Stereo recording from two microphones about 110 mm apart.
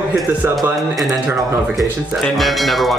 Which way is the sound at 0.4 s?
20° right (ahead or behind).